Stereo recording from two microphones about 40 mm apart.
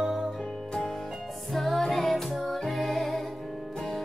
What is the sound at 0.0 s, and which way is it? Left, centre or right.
Music, centre.